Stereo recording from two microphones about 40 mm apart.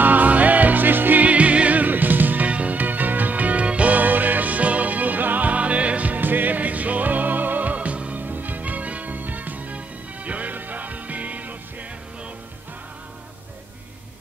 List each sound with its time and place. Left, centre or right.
0.0 s music: right
1.2 s music: right
8.2 s music: right